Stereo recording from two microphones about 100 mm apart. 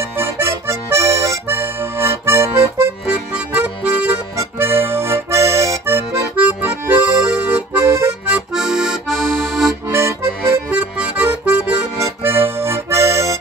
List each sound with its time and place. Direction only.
0.2 s music: 30° right (ahead or behind)
1.5 s accordion: 20° right (ahead or behind)
3.1 s music: 15° right (ahead or behind)
4.4 s accordion: 25° right (ahead or behind)
7.8 s accordion: 25° right (ahead or behind)
8.3 s accordion: 10° right (ahead or behind)
9.8 s music: 25° right (ahead or behind)
10.7 s music: 10° right (ahead or behind)
12.2 s accordion: 25° right (ahead or behind)